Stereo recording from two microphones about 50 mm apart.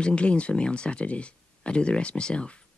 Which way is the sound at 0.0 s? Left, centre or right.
Left.